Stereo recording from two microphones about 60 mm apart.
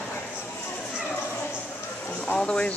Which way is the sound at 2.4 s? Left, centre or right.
Centre.